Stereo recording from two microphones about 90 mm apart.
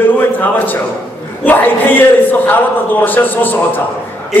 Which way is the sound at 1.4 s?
20° left (ahead or behind).